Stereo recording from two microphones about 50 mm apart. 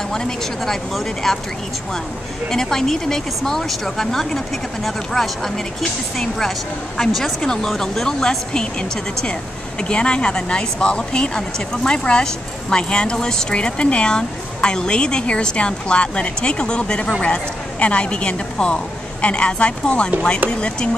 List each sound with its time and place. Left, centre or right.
0.1 s speech: centre
2.5 s speech: centre
9.8 s a woman's voice: centre